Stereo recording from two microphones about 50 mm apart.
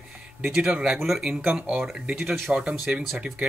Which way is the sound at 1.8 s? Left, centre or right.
Centre.